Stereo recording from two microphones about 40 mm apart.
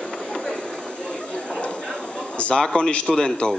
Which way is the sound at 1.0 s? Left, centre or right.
Left.